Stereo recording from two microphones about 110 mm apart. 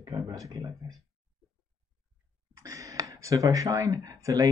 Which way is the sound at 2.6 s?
30° right (ahead or behind).